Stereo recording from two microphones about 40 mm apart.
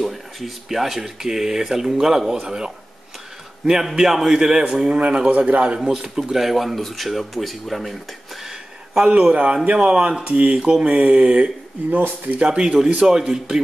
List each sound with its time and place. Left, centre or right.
0.0 s a sound: centre
0.7 s speech: centre; by 5.8 s right
6.0 s speech: centre
9.0 s speech: right
12.4 s speech: centre